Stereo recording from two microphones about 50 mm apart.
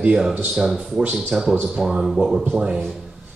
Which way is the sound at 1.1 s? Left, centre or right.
Centre.